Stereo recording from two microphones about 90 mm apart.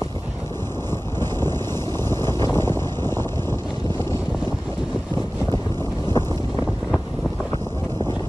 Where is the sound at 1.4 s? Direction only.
30° left (ahead or behind).